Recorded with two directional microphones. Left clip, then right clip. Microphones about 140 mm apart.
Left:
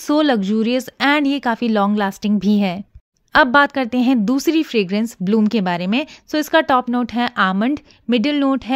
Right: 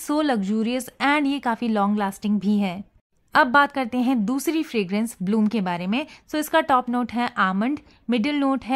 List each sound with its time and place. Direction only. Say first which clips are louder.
0.0 s a woman's voice: left 6 dB; 35° left (ahead or behind)